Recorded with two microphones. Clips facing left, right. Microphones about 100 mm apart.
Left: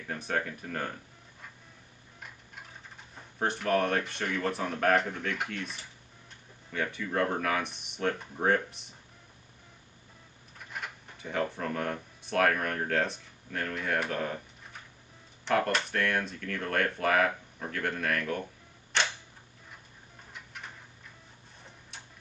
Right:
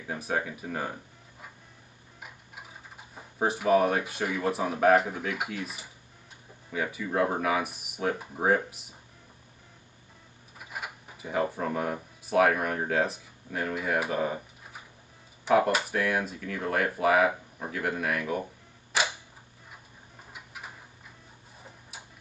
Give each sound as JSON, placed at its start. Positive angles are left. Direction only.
{"t": 0.0, "sound": "speech", "side_deg": -10}
{"t": 10.6, "sound": "speech", "side_deg": -10}
{"t": 20.3, "sound": "a sound", "side_deg": -5}
{"t": 21.9, "sound": "tick-tock", "side_deg": -5}